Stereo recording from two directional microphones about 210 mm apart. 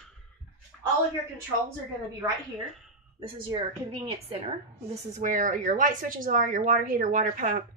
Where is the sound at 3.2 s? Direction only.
20° right (ahead or behind).